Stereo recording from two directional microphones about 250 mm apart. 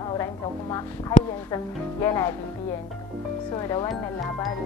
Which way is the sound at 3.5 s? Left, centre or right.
Centre.